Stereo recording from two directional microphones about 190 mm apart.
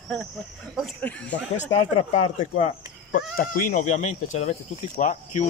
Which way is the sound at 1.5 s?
40° left (ahead or behind).